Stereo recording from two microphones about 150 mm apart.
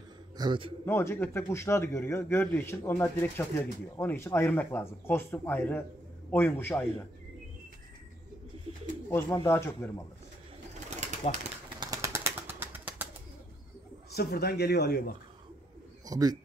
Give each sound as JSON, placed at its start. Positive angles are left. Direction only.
{"t": 0.4, "sound": "a man's voice", "side_deg": -35}
{"t": 0.8, "sound": "a man's voice", "side_deg": 15}
{"t": 9.1, "sound": "a man's voice", "side_deg": 20}
{"t": 11.0, "sound": "pigeon", "side_deg": -50}
{"t": 11.8, "sound": "a sound", "side_deg": -20}
{"t": 12.4, "sound": "bird", "side_deg": -10}
{"t": 14.1, "sound": "speech", "side_deg": 90}
{"t": 16.1, "sound": "speech", "side_deg": -25}